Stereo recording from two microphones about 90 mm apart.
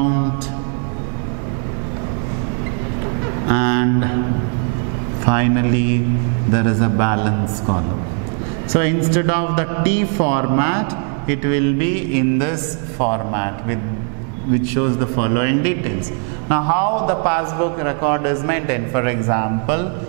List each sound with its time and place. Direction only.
3.4 s a sound: 15° right (ahead or behind)
5.3 s a man's voice: 15° right (ahead or behind)
14.8 s a man's voice: 15° right (ahead or behind)